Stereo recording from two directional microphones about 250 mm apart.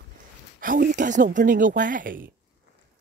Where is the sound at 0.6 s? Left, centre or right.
Right.